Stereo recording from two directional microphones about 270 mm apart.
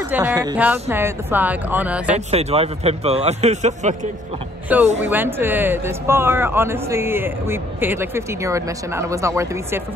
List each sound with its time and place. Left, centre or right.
0.1 s speech: centre
2.1 s a man's voice: right
4.7 s speech: centre